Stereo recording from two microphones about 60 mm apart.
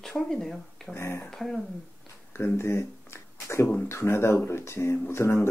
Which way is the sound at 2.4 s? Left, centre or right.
Left.